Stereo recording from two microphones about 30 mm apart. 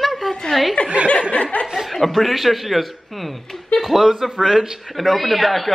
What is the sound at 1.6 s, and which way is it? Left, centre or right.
Speech, centre.